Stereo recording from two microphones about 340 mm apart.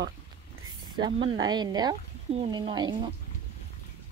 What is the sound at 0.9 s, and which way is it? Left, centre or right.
Speech, centre.